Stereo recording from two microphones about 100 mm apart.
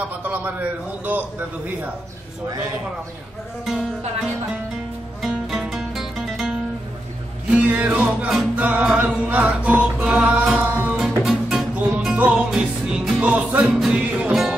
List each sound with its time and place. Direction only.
0.2 s music: 15° right (ahead or behind)
5.2 s music: centre (ahead or behind)
7.5 s music: 15° right (ahead or behind)